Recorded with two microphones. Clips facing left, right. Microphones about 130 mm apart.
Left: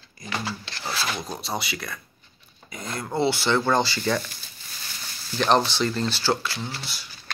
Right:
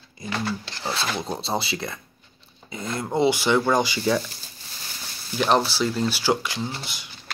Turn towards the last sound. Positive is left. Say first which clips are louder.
# right 1 dB
turn(degrees=-20)  # may be behind; listen again after turning